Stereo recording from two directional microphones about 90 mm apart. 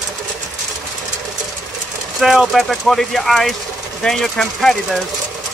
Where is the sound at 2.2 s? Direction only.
5° right (ahead or behind).